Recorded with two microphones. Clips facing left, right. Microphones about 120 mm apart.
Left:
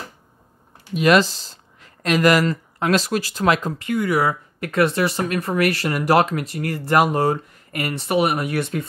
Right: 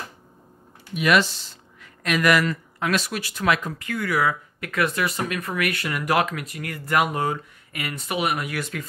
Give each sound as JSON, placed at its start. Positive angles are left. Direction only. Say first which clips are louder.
{"t": 1.0, "sound": "speech", "louder": "left 4 dB", "side_deg": 35}
{"t": 3.9, "sound": "speech", "louder": "left 5 dB", "side_deg": 20}
{"t": 4.2, "sound": "speech", "louder": "left 2 dB", "side_deg": 30}